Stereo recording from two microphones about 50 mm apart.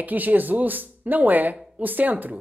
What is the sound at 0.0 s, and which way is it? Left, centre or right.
A woman's voice, right.